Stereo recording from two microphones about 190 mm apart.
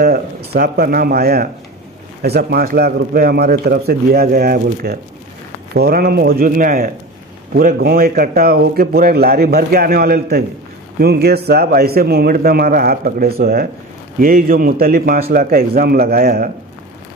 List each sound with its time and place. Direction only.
0.0 s a man's voice: 55° right (ahead or behind)